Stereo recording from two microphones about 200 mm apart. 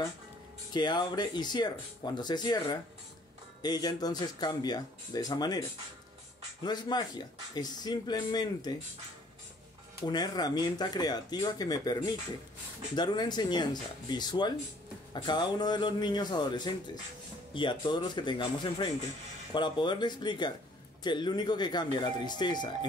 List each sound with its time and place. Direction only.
0.7 s speech: 20° left (ahead or behind)
6.6 s speech: 20° left (ahead or behind)
10.0 s speech: 20° left (ahead or behind)